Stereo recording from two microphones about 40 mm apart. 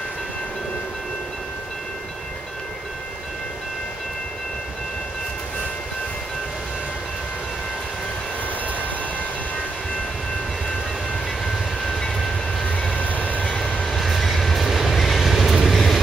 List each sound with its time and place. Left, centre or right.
11.4 s train: centre
12.9 s vehicle: left
13.8 s train: centre